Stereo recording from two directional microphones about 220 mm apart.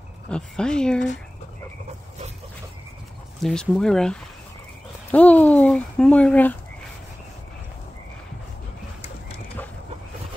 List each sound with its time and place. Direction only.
0.3 s speech: 5° left (ahead or behind)
3.4 s speech: centre (ahead or behind)
5.1 s a sound: 5° left (ahead or behind)